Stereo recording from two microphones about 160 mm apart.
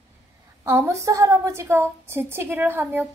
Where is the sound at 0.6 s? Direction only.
15° right (ahead or behind).